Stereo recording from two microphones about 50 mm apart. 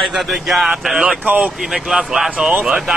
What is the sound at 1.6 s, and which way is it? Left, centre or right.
Speech, centre.